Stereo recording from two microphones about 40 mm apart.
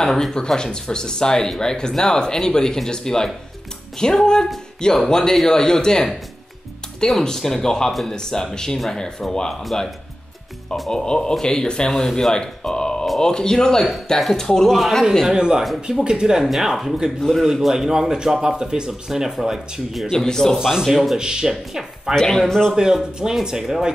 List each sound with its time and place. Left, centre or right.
0.0 s speech: centre
7.1 s speech: centre
10.9 s speech: centre
14.8 s speech: centre
15.2 s speech: centre
15.6 s speech: centre
16.0 s speech: right
16.4 s speech: centre
20.5 s speech: centre
20.8 s speech: centre
21.2 s speech: centre
22.1 s speech: centre
23.4 s speech: centre